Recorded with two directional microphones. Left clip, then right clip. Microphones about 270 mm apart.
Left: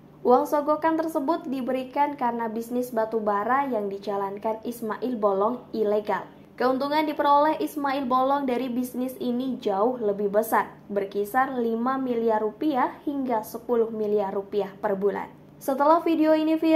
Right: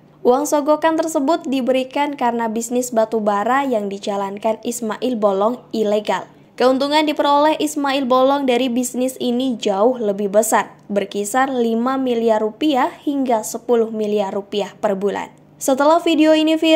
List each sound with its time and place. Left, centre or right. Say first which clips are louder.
0.2 s a woman's voice: right 5 dB; right